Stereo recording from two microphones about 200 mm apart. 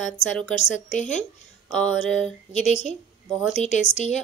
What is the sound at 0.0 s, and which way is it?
Speech, 5° left (ahead or behind).